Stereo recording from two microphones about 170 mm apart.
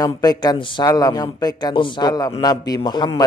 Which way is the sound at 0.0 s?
25° left (ahead or behind).